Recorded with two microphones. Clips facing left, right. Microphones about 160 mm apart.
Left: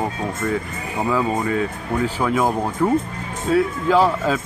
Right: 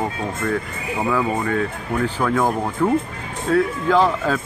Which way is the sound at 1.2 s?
20° left (ahead or behind).